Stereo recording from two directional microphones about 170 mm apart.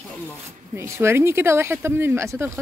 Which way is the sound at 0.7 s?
15° right (ahead or behind).